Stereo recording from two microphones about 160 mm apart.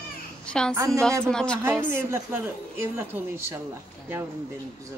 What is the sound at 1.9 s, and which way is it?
A woman's voice, 15° right (ahead or behind).